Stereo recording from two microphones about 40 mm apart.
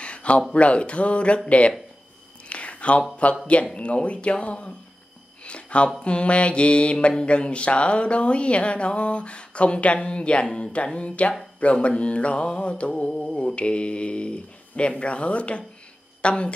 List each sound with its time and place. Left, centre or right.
0.0 s a sound: left
0.5 s speech: left
2.5 s a sound: left
3.2 s speech: left
5.4 s a sound: left
6.0 s mantra: left
10.6 s speech: left
12.0 s mantra: left
13.6 s mantra: left
16.2 s a woman's voice: left